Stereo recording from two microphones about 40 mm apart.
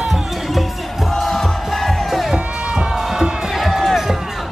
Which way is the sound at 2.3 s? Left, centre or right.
Right.